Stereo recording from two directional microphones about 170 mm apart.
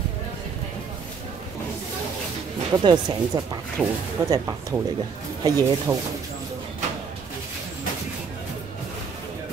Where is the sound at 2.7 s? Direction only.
25° right (ahead or behind).